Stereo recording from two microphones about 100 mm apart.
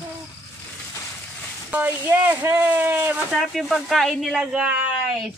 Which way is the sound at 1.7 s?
20° right (ahead or behind).